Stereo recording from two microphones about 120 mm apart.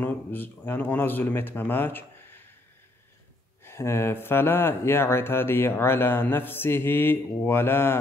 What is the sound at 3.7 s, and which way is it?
Speech, 20° left (ahead or behind).